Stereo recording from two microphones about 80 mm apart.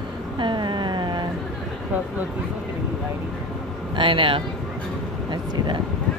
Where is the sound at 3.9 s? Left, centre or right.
Right.